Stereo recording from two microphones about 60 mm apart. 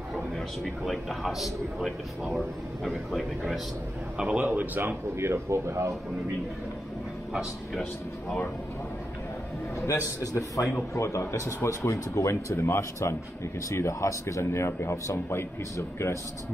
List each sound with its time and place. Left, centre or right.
0.8 s a man's voice: centre
4.2 s a man's voice: right
5.1 s speech: right
9.8 s a man's voice: left
10.7 s speech: left